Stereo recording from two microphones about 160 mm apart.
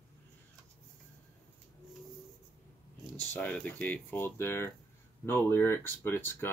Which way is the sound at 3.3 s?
10° left (ahead or behind).